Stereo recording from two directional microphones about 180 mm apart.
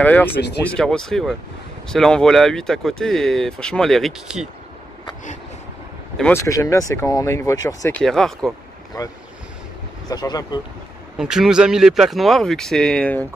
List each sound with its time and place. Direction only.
0.0 s speech: 10° left (ahead or behind)
6.3 s speech: 15° left (ahead or behind)
7.9 s speech: 5° left (ahead or behind)
10.0 s speech: 20° left (ahead or behind)
11.1 s speech: 5° right (ahead or behind)